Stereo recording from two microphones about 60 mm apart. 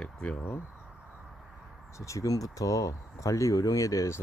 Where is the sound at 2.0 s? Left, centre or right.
Left.